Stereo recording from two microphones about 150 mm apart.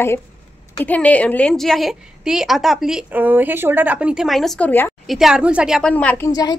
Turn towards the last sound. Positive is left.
turn(degrees=25)  # may be behind; listen again after turning